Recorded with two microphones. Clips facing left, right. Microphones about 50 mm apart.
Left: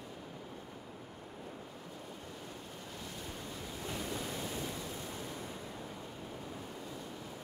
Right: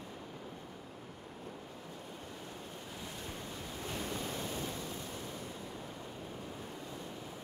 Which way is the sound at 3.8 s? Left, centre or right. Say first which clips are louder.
Even; right.